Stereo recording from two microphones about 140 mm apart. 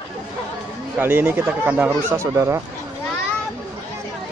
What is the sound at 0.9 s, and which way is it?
Speech, 15° right (ahead or behind).